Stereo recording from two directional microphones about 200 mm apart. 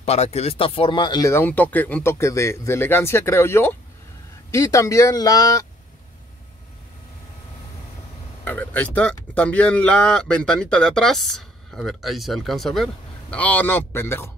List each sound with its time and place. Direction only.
0.0 s speech: 35° left (ahead or behind); by 5.7 s 15° left (ahead or behind)
8.5 s speech: 10° left (ahead or behind)